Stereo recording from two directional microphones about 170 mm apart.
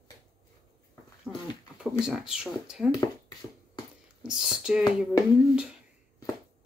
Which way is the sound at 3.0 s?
20° left (ahead or behind).